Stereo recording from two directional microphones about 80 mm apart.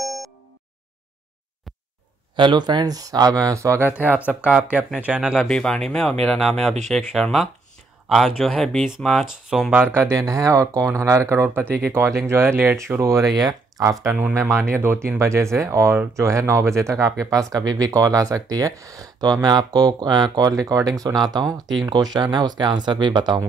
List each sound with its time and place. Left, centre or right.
0.0 s a sound: centre
2.3 s speech: right
3.9 s speech: right
5.2 s speech: centre
5.5 s speech: centre
9.7 s speech: right
13.4 s speech: right
19.4 s speech: right